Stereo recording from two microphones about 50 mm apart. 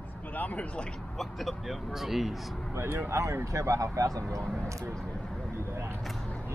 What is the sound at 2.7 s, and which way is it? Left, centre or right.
Speech, right.